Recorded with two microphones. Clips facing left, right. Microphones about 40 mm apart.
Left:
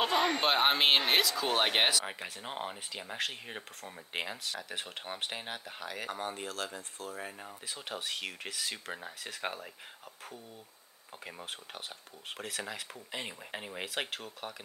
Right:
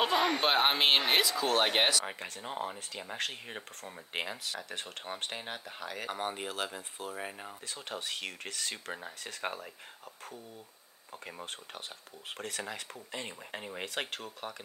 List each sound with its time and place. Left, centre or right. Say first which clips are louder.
0.0 s speech: right 1 dB; centre
1.4 s speech: right 1 dB; centre
2.4 s speech: right 2 dB; left
2.7 s speech: even; centre
6.0 s speech: right 3 dB; centre
7.6 s speech: left 1 dB; centre
11.2 s speech: even; centre
13.1 s speech: left 1 dB; centre